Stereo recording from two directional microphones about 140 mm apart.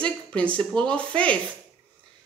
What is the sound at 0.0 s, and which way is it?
Speech, 10° left (ahead or behind).